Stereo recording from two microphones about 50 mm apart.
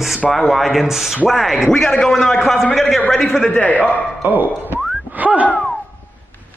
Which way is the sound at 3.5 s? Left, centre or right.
Left.